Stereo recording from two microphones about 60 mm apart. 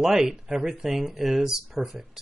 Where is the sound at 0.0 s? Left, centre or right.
Centre.